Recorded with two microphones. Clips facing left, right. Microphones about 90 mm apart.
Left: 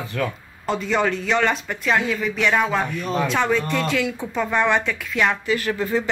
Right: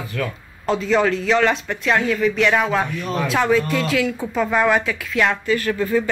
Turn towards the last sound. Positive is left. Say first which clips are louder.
# right 3 dB
turn(degrees=20)  # may be behind; listen again after turning